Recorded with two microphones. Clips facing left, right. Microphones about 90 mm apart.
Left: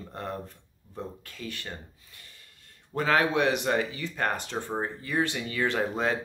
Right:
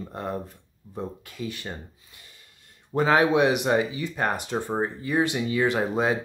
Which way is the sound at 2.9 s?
20° right (ahead or behind).